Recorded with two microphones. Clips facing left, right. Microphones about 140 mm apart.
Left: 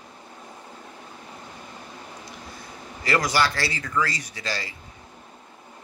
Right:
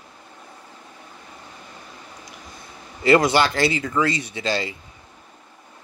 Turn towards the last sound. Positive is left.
turn(degrees=-25)  # may be behind; listen again after turning